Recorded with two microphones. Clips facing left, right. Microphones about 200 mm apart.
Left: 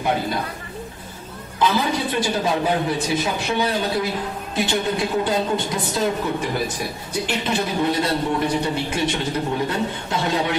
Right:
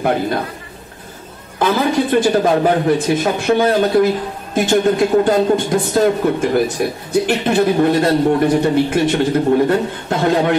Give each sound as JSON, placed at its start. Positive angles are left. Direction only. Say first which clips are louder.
{"t": 1.6, "sound": "speech", "louder": "right 5 dB", "side_deg": -50}